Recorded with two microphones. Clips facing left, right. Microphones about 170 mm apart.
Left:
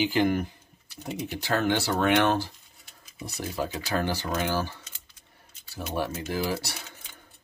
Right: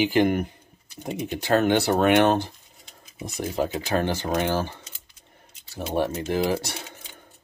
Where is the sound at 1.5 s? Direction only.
20° right (ahead or behind).